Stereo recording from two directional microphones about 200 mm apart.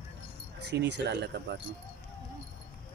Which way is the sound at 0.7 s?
60° right (ahead or behind).